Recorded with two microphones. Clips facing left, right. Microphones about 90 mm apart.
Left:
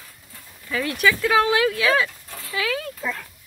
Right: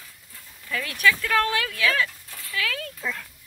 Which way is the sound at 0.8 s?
10° left (ahead or behind).